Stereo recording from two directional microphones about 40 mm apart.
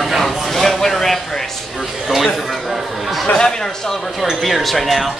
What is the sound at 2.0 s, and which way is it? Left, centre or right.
A man's voice, centre.